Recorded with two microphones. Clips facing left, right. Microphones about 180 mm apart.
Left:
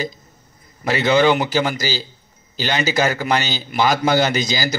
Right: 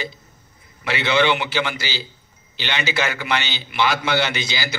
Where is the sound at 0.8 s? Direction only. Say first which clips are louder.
Left 4 dB; 40° left (ahead or behind).